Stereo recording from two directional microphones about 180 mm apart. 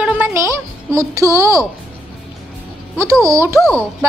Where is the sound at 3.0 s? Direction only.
15° right (ahead or behind).